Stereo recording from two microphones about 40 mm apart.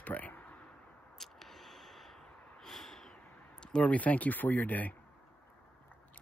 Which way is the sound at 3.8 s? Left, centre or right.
Left.